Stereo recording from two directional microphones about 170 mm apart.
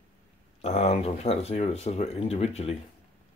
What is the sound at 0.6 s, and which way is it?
Speech, 40° left (ahead or behind).